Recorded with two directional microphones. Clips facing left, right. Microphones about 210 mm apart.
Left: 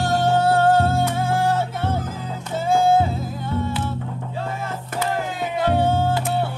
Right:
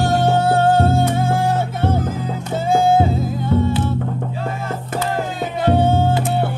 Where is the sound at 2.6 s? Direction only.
15° right (ahead or behind).